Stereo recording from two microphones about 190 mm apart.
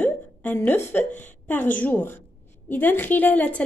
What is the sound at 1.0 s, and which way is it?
Speech, 40° left (ahead or behind).